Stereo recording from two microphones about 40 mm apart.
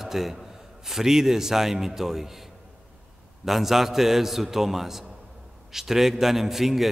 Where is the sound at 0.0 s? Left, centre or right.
Centre.